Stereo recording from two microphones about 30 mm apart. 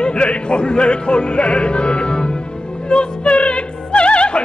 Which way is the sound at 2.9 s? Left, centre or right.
Left.